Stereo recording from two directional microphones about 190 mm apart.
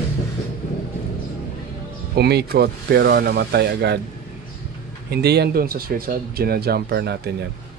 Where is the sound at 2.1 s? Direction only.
60° right (ahead or behind).